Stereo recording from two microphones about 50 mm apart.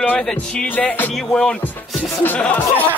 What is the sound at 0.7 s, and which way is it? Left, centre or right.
Music, left.